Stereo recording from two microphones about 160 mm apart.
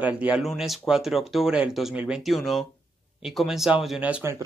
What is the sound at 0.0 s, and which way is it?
Speech, 10° right (ahead or behind).